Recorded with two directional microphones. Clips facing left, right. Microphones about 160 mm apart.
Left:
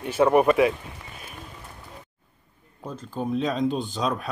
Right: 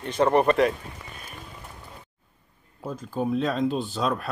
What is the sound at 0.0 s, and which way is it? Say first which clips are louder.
Speech: left 2 dB; 10° left (ahead or behind).